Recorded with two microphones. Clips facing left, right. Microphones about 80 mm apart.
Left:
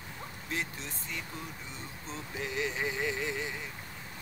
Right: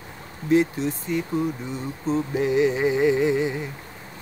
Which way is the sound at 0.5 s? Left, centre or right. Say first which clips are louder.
Right 18 dB; centre.